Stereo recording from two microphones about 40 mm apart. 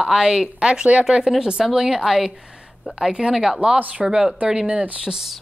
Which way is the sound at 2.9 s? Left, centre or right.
Right.